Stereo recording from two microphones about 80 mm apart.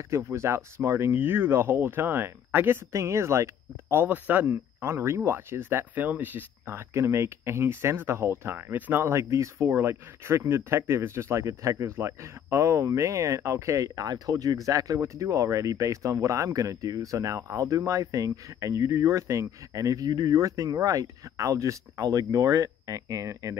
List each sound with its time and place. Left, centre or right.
0.1 s speech: right
2.9 s speech: right
3.9 s speech: right
9.2 s speech: right